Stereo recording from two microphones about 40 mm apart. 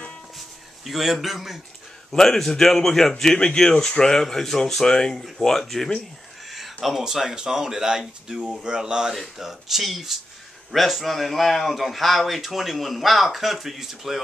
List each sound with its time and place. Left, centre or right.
0.8 s a man's voice: centre
2.1 s speech: centre
5.4 s speech: centre
6.5 s speech: centre
9.4 s a man's voice: centre